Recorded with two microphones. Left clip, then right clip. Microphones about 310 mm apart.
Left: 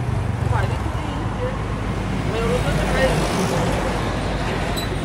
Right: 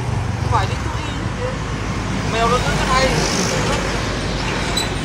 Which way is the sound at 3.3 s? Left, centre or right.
Left.